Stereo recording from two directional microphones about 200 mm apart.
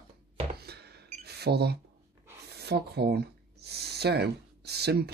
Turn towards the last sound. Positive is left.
turn(degrees=-55)  # may be behind; listen again after turning